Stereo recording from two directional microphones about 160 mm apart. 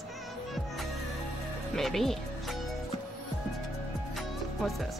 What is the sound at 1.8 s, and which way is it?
Speech, centre (ahead or behind).